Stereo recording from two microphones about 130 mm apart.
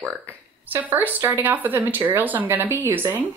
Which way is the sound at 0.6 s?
15° right (ahead or behind).